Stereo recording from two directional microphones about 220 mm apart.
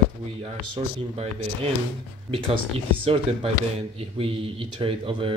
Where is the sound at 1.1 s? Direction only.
30° right (ahead or behind).